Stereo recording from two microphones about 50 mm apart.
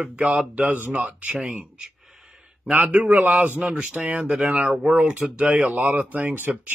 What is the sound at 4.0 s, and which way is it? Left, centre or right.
Speech, right.